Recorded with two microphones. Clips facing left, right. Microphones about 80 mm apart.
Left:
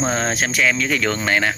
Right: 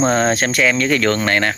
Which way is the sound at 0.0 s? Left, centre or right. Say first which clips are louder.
Right 5 dB; centre.